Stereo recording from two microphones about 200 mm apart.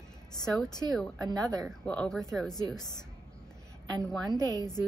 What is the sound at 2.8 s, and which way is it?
Speech, 20° left (ahead or behind).